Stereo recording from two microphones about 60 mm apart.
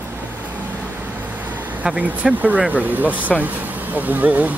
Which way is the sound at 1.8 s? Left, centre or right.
Right.